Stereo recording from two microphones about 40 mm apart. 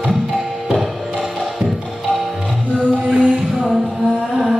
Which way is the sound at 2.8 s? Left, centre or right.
Right.